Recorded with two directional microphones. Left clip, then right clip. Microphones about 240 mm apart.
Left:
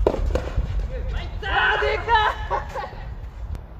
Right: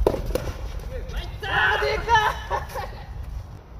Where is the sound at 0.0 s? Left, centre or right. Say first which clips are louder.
Left 1 dB; centre.